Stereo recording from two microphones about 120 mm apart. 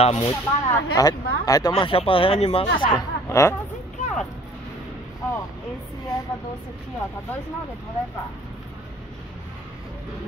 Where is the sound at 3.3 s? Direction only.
25° left (ahead or behind).